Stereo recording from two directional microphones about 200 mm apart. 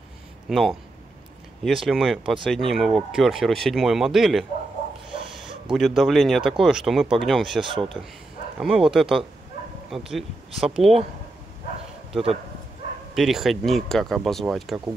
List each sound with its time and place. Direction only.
0.5 s speech: centre (ahead or behind)
7.6 s speech: 25° right (ahead or behind)
8.5 s speech: centre (ahead or behind)
12.1 s speech: centre (ahead or behind)